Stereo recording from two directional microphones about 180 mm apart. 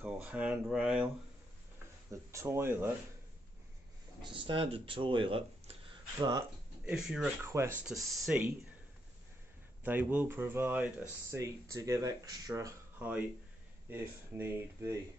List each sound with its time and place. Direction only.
0.0 s speech: 5° right (ahead or behind)
2.0 s speech: 15° right (ahead or behind)
4.2 s speech: 25° right (ahead or behind)
6.9 s speech: 5° right (ahead or behind)
7.4 s speech: 15° right (ahead or behind)
7.8 s speech: centre (ahead or behind)
9.8 s speech: 10° right (ahead or behind)